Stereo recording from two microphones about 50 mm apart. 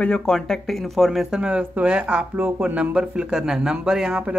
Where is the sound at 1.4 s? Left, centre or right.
Right.